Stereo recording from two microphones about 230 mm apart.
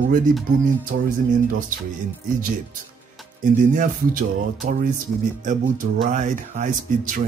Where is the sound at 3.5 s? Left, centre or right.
Right.